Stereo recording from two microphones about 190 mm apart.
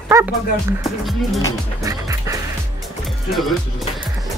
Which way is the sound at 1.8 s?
15° right (ahead or behind).